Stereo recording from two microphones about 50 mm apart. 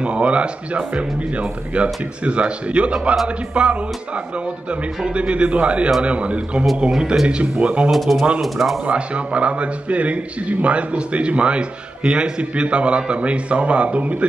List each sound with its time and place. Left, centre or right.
0.0 s a man's voice: right
7.9 s speech: centre
8.8 s a man's voice: right